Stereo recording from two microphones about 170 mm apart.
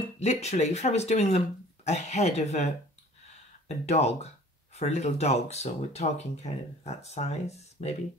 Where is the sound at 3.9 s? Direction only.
40° left (ahead or behind).